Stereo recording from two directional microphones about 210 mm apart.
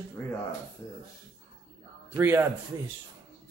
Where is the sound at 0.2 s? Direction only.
10° left (ahead or behind).